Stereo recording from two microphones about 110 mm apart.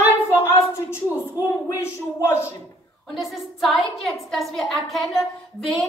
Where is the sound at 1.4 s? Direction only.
35° left (ahead or behind).